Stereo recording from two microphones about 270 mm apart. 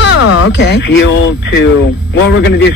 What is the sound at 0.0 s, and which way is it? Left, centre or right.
Speech, left.